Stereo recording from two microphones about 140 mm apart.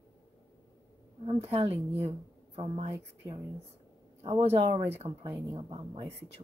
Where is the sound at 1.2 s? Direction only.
45° right (ahead or behind).